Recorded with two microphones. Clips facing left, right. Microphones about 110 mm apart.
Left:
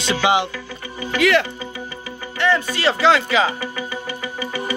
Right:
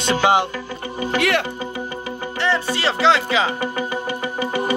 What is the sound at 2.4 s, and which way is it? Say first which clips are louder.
Music: left 2 dB; 30° right (ahead or behind).